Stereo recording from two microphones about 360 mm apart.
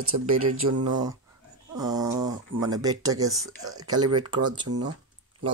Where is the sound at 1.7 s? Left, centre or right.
Centre.